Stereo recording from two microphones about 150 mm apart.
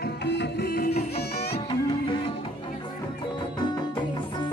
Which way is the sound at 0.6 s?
80° left.